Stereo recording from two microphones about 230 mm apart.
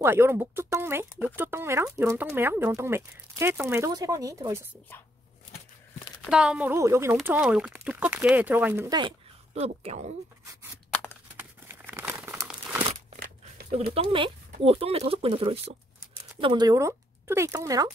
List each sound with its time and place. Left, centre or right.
0.0 s speech: centre
6.3 s speech: centre; by 10.1 s right
10.9 s tearing: centre
11.3 s crumpling: centre
13.1 s a sound: right
13.9 s speech: right